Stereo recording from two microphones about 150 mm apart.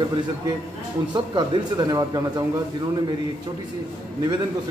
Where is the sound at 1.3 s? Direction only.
30° right (ahead or behind).